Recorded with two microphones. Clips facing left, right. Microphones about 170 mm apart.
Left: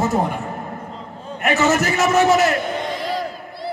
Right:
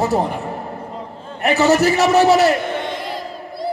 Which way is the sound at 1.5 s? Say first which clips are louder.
Right 3 dB; 35° right (ahead or behind).